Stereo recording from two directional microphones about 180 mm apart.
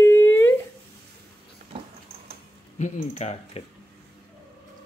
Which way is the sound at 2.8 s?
45° left (ahead or behind).